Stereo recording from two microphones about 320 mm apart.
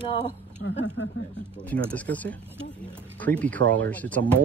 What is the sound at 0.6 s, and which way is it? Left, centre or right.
Speech, left.